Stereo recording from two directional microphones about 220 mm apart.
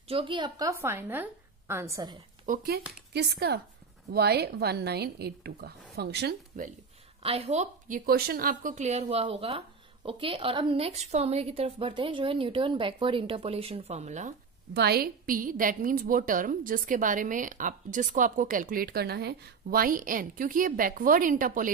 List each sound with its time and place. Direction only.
0.1 s a woman's voice: 25° right (ahead or behind)
2.4 s a woman's voice: 40° right (ahead or behind)
7.2 s a woman's voice: 30° right (ahead or behind)
14.7 s a woman's voice: 45° right (ahead or behind)